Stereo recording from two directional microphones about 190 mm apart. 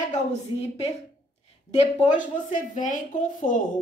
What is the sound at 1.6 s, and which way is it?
A woman's voice, 40° left (ahead or behind).